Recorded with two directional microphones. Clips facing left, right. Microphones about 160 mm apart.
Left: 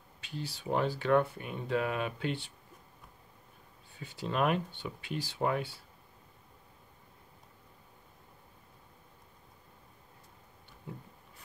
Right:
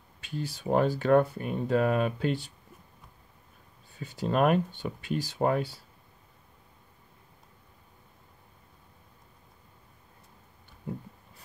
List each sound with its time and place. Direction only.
0.2 s speech: 45° right (ahead or behind)
4.0 s speech: 45° right (ahead or behind)